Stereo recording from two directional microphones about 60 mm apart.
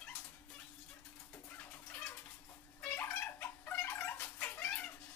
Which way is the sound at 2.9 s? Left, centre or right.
Left.